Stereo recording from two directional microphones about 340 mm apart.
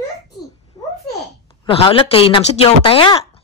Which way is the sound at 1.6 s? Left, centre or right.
Centre.